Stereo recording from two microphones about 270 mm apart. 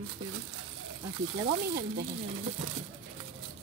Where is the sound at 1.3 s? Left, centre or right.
Centre.